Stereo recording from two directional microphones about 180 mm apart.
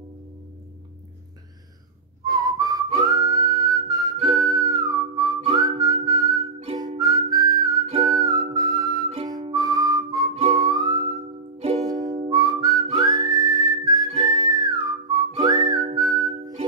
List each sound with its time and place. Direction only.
2.2 s whistling: 20° right (ahead or behind)
8.0 s music: 20° right (ahead or behind)
11.6 s music: 35° right (ahead or behind)
11.9 s whistling: 20° right (ahead or behind)